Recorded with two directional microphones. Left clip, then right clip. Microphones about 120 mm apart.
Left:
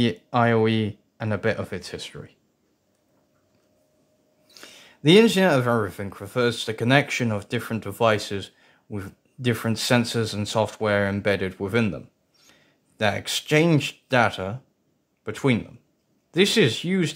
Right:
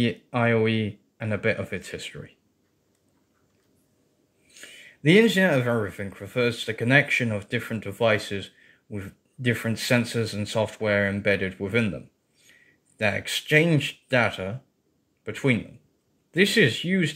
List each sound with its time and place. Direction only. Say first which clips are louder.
0.0 s speech: left 3 dB; 30° left (ahead or behind); by 2.3 s 10° left (ahead or behind)
4.6 s speech: even; 30° left (ahead or behind)
13.0 s speech: left 1 dB; 25° left (ahead or behind)